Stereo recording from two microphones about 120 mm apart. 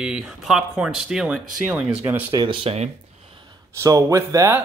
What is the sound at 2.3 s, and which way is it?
Speech, 40° right (ahead or behind).